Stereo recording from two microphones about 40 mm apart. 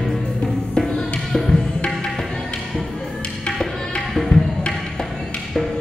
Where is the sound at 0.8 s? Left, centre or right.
Left.